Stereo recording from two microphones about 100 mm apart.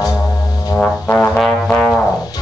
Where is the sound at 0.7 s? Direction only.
20° left (ahead or behind).